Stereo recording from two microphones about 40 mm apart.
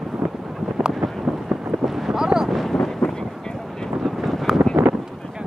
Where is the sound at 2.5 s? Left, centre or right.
Centre.